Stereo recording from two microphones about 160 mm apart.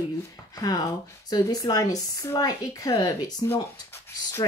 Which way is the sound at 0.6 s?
25° left (ahead or behind).